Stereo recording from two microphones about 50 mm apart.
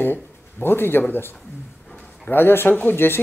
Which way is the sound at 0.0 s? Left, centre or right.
Left.